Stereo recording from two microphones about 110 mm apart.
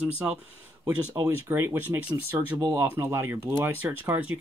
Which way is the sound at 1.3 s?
20° right (ahead or behind).